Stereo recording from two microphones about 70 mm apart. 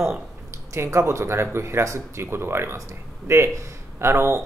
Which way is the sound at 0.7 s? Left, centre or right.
Right.